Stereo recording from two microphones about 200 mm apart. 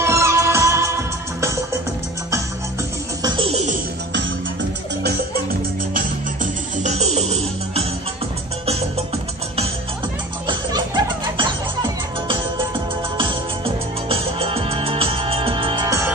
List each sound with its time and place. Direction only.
0.0 s music of bollywood: 15° right (ahead or behind)
3.2 s music: 20° right (ahead or behind)
5.0 s music: 50° right (ahead or behind)
5.9 s music: 40° right (ahead or behind)
10.4 s music: 25° right (ahead or behind)
14.0 s music: 30° right (ahead or behind)